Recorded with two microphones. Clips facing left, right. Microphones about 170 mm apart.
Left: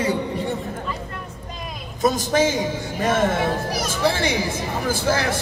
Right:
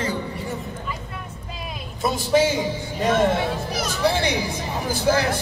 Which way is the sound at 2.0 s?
45° left (ahead or behind).